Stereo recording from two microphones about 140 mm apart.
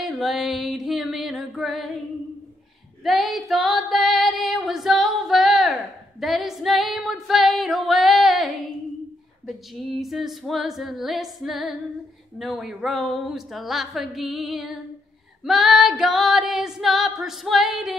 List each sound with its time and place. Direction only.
0.0 s music: centre (ahead or behind)
3.0 s female singing: centre (ahead or behind)
9.5 s female singing: centre (ahead or behind)